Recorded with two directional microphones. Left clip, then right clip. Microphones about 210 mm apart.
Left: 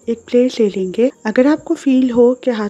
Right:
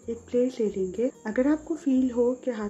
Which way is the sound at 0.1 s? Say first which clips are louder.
Left 12 dB; 45° left (ahead or behind).